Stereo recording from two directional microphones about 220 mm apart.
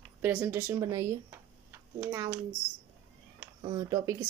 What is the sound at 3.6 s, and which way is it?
Speech, 15° right (ahead or behind).